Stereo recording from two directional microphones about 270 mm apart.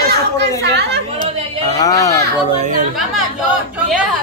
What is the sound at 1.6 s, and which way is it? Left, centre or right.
Speech, centre.